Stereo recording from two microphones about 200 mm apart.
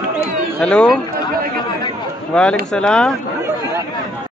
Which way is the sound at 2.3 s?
5° left (ahead or behind).